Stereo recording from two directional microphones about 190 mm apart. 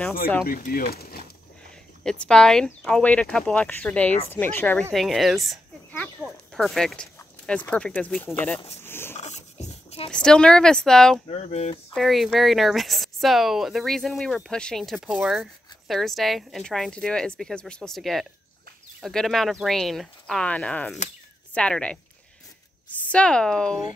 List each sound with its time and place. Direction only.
0.5 s speech: 50° left (ahead or behind)
2.0 s speech: 5° left (ahead or behind)
4.9 s speech: centre (ahead or behind)
8.8 s a sound: 10° left (ahead or behind)
9.1 s dog: 35° left (ahead or behind)
10.1 s speech: 5° left (ahead or behind)
11.2 s speech: 35° left (ahead or behind)
11.9 s speech: centre (ahead or behind)